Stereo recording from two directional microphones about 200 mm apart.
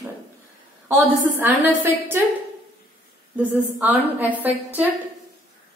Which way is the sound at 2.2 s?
10° right (ahead or behind).